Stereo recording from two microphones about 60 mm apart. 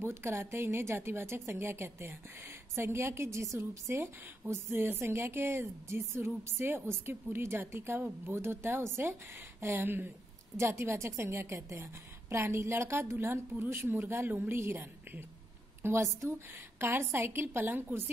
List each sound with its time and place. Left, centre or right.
0.0 s a woman's voice: right
10.6 s a woman's voice: right